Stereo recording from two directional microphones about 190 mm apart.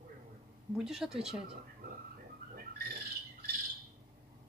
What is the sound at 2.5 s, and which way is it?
Bird, 50° right (ahead or behind).